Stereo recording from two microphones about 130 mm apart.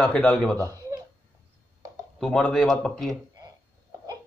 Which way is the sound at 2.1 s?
Centre (ahead or behind).